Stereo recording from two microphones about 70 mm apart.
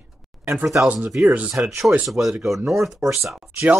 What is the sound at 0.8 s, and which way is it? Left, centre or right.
Speech, centre.